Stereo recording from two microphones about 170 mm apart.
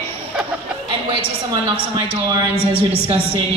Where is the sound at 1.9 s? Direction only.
30° right (ahead or behind).